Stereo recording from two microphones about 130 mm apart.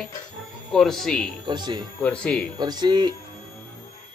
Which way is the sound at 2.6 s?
30° right (ahead or behind).